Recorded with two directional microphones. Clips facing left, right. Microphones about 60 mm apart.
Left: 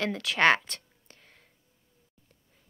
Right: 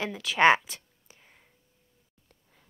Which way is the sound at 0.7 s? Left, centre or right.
Centre.